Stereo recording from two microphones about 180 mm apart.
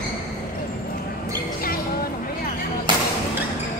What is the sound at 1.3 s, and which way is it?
Music, 55° left (ahead or behind).